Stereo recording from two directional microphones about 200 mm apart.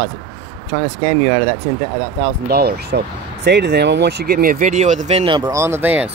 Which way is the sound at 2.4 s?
50° right (ahead or behind).